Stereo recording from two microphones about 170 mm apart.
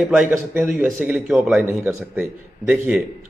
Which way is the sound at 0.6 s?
5° right (ahead or behind).